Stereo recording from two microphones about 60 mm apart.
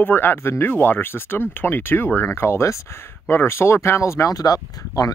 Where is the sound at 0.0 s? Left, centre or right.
Left.